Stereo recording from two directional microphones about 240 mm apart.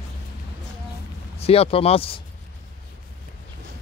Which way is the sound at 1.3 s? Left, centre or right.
Left.